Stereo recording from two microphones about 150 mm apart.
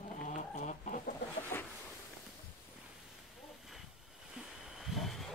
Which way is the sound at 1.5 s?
15° left (ahead or behind).